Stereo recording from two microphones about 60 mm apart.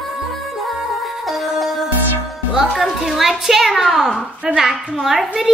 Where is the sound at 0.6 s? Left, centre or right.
Centre.